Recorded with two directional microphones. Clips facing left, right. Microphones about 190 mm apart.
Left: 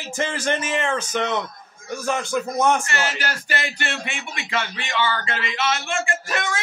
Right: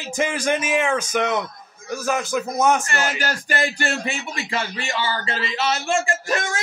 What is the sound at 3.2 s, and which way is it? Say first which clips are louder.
Speech: right 4 dB; 40° right (ahead or behind).